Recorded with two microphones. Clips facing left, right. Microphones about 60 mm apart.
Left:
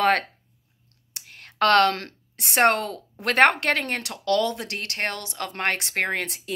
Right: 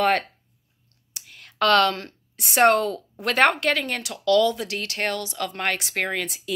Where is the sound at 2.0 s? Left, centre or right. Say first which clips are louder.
Even; left.